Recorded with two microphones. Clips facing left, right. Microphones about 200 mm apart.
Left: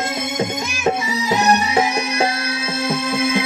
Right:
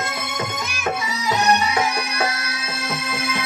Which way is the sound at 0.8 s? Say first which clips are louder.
Left 5 dB; 25° left (ahead or behind).